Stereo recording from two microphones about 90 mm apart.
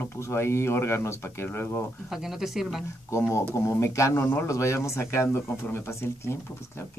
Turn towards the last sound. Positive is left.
turn(degrees=30)  # may be behind; listen again after turning